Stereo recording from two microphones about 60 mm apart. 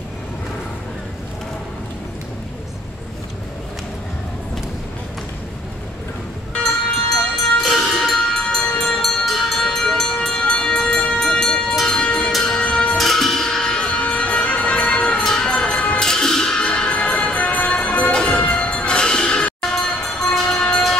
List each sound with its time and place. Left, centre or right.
6.5 s train: centre
10.6 s music: centre
13.8 s music: centre
14.7 s music: centre
17.4 s music: left
17.6 s music: centre